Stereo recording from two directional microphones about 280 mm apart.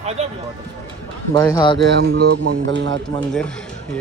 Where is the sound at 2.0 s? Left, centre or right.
Right.